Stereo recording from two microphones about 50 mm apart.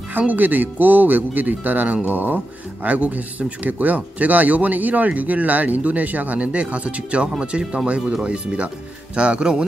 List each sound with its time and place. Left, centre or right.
0.3 s speech: right; by 9.7 s centre